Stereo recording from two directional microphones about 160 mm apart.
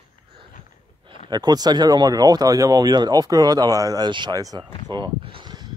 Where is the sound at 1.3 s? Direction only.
25° right (ahead or behind).